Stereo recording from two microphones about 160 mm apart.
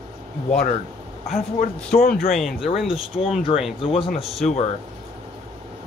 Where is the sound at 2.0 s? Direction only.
65° left (ahead or behind).